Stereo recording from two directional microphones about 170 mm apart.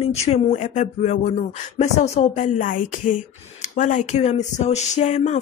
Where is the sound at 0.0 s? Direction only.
35° left (ahead or behind).